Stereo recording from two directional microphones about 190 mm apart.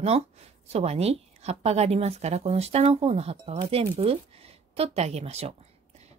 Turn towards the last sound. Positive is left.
turn(degrees=-35)  # may be behind; listen again after turning